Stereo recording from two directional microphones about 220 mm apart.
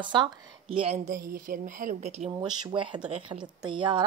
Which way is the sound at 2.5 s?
20° right (ahead or behind).